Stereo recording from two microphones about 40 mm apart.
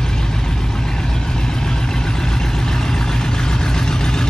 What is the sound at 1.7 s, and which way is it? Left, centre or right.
Vehicle, centre.